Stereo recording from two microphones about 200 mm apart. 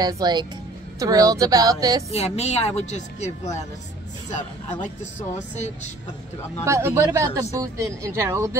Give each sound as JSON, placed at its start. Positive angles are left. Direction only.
{"t": 0.0, "sound": "a woman's voice", "side_deg": -20}
{"t": 2.0, "sound": "speech", "side_deg": 30}
{"t": 6.6, "sound": "a woman's voice", "side_deg": -15}